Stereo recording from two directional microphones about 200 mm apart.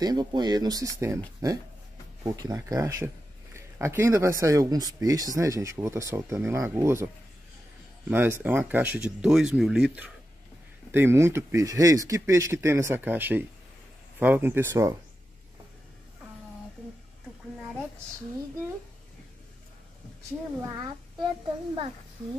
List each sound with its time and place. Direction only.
0.0 s speech: 20° right (ahead or behind)
8.1 s speech: 10° right (ahead or behind)
20.6 s a child's voice: 20° right (ahead or behind)